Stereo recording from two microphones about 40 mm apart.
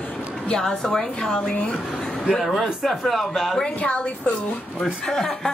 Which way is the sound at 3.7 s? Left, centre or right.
Left.